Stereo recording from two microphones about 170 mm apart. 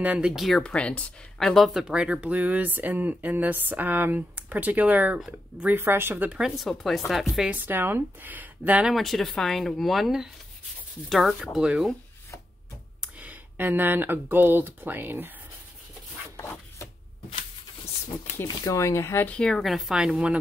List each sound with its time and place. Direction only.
0.0 s speech: 5° right (ahead or behind)
13.0 s speech: 10° right (ahead or behind)
16.3 s rub: 15° left (ahead or behind)
18.4 s speech: 20° left (ahead or behind); by 20.3 s 5° right (ahead or behind)